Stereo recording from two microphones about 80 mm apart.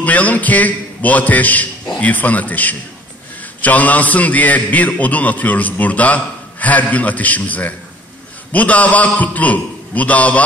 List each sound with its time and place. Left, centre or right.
0.0 s a man's voice: centre